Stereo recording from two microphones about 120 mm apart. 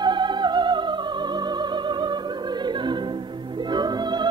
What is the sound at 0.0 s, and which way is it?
Music, 40° right (ahead or behind).